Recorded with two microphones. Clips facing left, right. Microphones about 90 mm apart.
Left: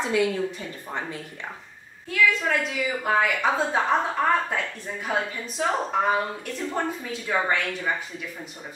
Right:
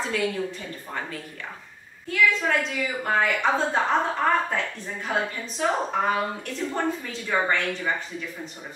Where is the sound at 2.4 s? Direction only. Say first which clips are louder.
Even; 5° left (ahead or behind).